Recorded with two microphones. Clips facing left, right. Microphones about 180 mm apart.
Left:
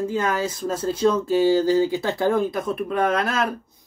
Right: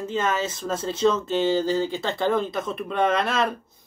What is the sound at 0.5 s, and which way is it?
Speech, 10° left (ahead or behind).